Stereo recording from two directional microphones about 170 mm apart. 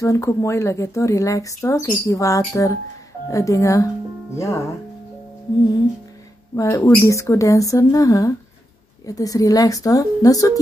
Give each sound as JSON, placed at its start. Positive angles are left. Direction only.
{"t": 0.0, "sound": "speech", "side_deg": 20}
{"t": 6.5, "sound": "speech", "side_deg": 15}